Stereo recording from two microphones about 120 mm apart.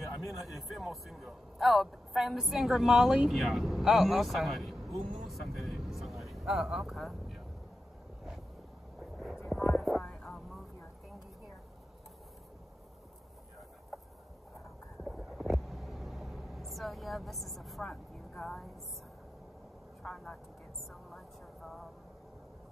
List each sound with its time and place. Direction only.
0.0 s a man's voice: centre (ahead or behind)
9.5 s hum: centre (ahead or behind)
15.0 s vehicle: centre (ahead or behind)
20.0 s vehicle: 5° left (ahead or behind)